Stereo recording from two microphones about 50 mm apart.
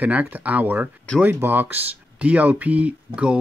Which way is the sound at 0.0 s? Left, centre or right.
Right.